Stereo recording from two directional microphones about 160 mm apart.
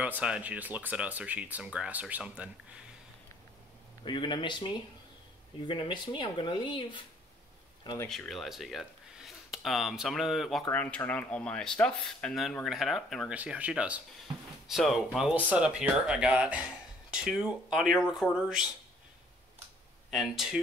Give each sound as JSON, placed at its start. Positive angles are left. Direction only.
{"t": 0.0, "sound": "speech", "side_deg": -5}
{"t": 4.0, "sound": "speech", "side_deg": 30}
{"t": 8.1, "sound": "speech", "side_deg": 0}
{"t": 10.7, "sound": "speech", "side_deg": 10}
{"t": 20.1, "sound": "speech", "side_deg": 0}